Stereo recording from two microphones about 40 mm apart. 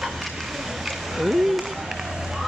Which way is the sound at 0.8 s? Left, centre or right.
Centre.